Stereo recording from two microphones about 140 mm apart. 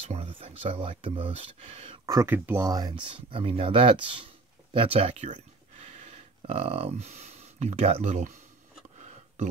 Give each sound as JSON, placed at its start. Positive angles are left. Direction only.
{"t": 0.0, "sound": "speech", "side_deg": -45}
{"t": 2.0, "sound": "speech", "side_deg": -20}
{"t": 2.7, "sound": "speech", "side_deg": -30}
{"t": 5.3, "sound": "a sound", "side_deg": -55}